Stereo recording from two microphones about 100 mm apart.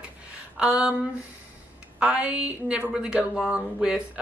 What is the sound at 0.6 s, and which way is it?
Speech, 10° right (ahead or behind).